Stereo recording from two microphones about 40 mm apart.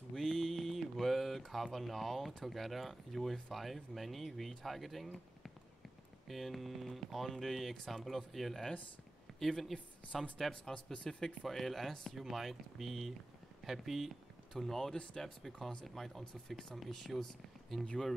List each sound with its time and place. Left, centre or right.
0.1 s a sound: centre
1.5 s a woman's voice: centre
10.7 s speech: centre
11.4 s speech: centre
12.2 s speech: centre
14.5 s speech: centre